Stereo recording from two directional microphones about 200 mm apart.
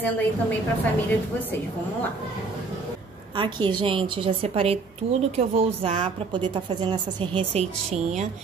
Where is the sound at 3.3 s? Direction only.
25° right (ahead or behind).